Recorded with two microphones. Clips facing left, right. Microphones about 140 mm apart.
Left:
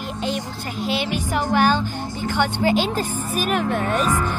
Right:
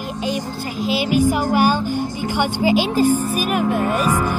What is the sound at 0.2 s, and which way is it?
Speech, 5° right (ahead or behind).